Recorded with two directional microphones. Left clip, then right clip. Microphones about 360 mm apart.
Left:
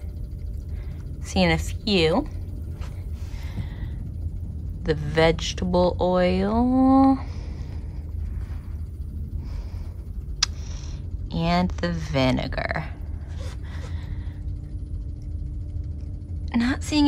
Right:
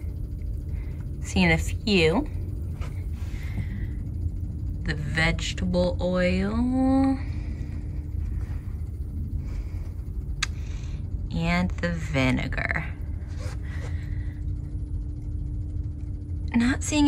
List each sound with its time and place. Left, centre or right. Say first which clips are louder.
1.3 s speech: left 1 dB; centre
4.8 s speech: left 6 dB; centre
10.4 s a sound: left 5 dB; centre
11.3 s speech: left 4 dB; centre
16.5 s a woman's voice: left 1 dB; centre